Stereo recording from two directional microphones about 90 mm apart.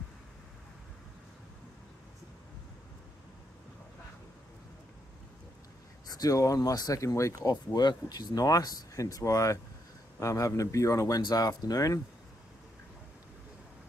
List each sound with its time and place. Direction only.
6.0 s speech: 45° left (ahead or behind)
7.7 s speech: 50° left (ahead or behind)